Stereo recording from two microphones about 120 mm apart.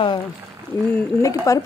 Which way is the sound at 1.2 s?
25° left (ahead or behind).